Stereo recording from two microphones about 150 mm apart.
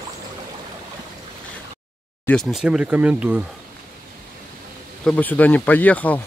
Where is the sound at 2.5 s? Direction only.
5° right (ahead or behind).